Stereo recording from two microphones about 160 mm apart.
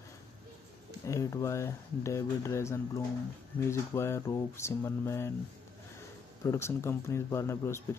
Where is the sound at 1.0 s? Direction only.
20° left (ahead or behind).